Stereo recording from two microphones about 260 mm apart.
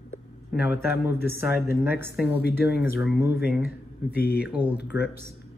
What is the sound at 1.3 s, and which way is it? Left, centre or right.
Speech, centre.